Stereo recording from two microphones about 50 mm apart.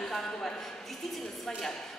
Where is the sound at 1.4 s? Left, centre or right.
Centre.